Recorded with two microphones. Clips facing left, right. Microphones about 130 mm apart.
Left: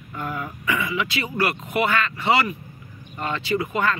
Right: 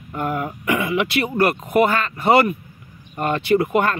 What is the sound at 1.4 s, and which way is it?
Speech, 45° right (ahead or behind).